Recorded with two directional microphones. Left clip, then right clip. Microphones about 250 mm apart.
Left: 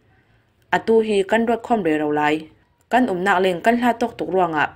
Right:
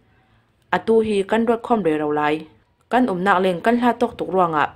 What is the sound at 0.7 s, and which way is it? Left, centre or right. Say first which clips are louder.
Speech: left 1 dB; centre.